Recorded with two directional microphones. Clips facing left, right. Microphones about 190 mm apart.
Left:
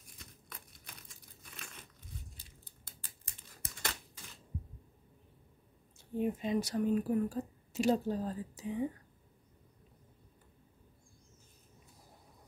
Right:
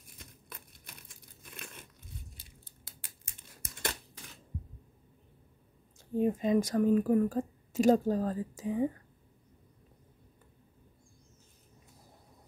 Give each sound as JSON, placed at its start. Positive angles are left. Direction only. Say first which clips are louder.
{"t": 5.9, "sound": "speech", "louder": "right 5 dB", "side_deg": -40}